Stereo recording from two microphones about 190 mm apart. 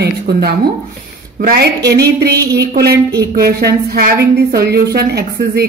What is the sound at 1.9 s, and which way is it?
A woman's voice, 60° right (ahead or behind).